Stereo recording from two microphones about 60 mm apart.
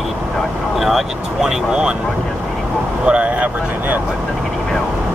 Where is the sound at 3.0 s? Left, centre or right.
Centre.